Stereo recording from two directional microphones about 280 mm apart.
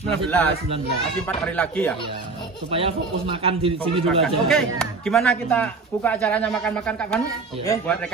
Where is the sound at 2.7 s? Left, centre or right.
Centre.